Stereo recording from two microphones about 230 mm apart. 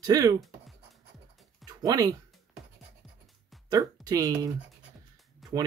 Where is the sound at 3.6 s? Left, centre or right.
Centre.